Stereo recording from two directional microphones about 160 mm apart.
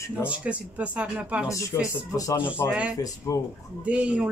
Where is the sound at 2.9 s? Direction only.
20° left (ahead or behind).